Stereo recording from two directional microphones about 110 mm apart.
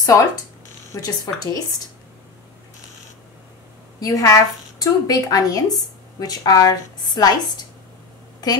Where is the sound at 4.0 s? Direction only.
30° left (ahead or behind).